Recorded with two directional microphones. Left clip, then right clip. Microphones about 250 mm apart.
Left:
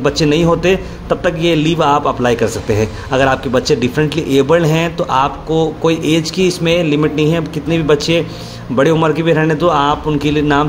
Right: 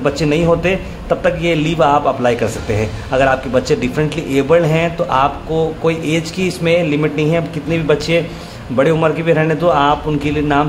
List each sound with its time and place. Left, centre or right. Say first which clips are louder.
0.0 s a man's voice: left 2 dB; centre